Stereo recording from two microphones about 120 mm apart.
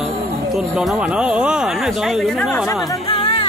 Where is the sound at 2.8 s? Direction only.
35° left (ahead or behind).